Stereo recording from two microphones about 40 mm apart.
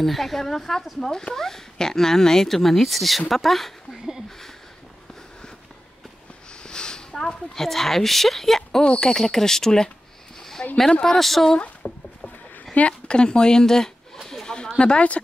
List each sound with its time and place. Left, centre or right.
0.0 s speech: centre
6.6 s speech: left
10.6 s speech: left
11.1 s speech: centre
11.8 s speech: left
13.1 s speech: left
14.1 s a sound: centre
14.8 s speech: left